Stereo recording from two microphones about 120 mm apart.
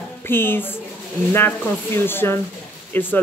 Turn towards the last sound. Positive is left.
turn(degrees=15)  # may be behind; listen again after turning